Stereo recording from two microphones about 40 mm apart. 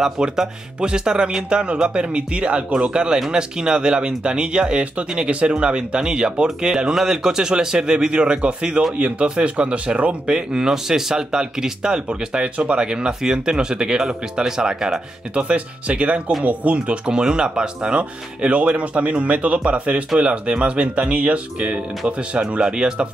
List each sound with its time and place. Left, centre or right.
0.2 s speech: right
10.7 s speech: centre
15.3 s speech: right
22.6 s speech: centre